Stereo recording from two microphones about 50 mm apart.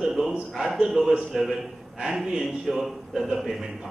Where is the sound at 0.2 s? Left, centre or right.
Centre.